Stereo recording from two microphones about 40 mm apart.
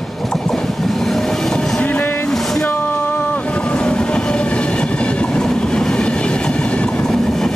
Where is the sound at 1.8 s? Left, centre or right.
Left.